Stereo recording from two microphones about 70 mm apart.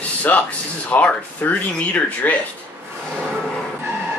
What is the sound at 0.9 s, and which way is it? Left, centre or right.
Speech, left.